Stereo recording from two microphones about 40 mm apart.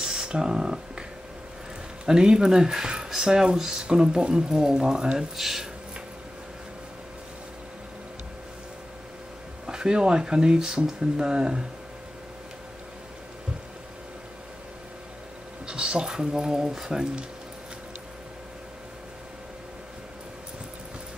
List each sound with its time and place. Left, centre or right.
0.0 s a sound: centre
2.0 s speech: centre
5.3 s speech: centre
9.7 s speech: centre
15.6 s speech: right